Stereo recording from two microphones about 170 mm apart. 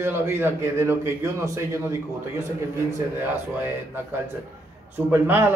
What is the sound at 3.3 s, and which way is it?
A man's voice, 10° right (ahead or behind).